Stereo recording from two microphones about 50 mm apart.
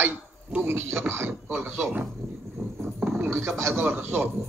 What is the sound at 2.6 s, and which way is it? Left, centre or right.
Roaring cats, right.